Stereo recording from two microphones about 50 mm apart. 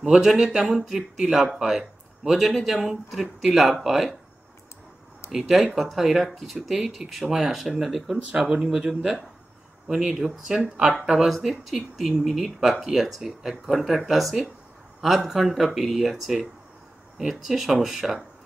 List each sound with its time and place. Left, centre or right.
0.4 s speech: centre
5.3 s speech: centre
11.1 s a man's voice: centre